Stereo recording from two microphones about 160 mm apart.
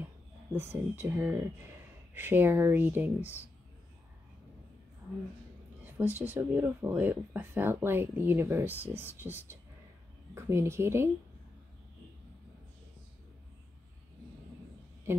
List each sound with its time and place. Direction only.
0.6 s speech: 15° right (ahead or behind)
5.9 s speech: 10° right (ahead or behind)